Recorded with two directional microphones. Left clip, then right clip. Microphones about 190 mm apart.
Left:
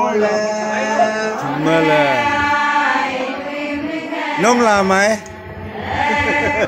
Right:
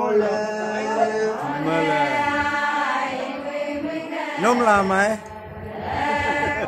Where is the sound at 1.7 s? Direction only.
20° left (ahead or behind).